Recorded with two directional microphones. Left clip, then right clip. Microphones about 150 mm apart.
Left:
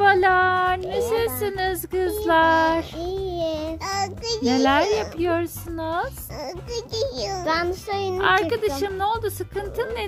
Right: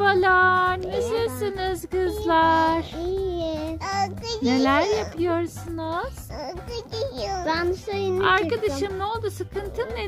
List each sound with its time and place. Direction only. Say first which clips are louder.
0.0 s a sound: left 1 dB; 30° left (ahead or behind)
1.1 s music: left 2 dB; 30° left (ahead or behind)
3.0 s a sound: even; 30° right (ahead or behind)
3.8 s child singing: right 2 dB; 5° right (ahead or behind)
5.2 s a woman's voice: left 1 dB; 30° left (ahead or behind)
6.7 s music: left 5 dB; 10° right (ahead or behind)
7.4 s child singing: left 2 dB; 30° right (ahead or behind)
8.2 s a woman's voice: left 1 dB; 25° left (ahead or behind)